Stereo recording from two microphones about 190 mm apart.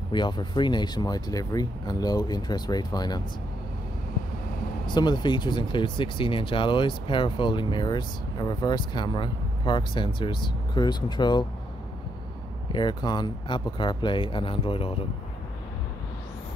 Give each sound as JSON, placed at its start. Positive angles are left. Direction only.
{"t": 0.1, "sound": "speech", "side_deg": 25}
{"t": 4.8, "sound": "speech", "side_deg": 25}
{"t": 12.7, "sound": "speech", "side_deg": 25}